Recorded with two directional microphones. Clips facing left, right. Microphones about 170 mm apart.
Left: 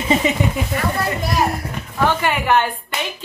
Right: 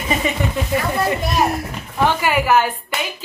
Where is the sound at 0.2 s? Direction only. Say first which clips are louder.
Left 2 dB; 20° left (ahead or behind).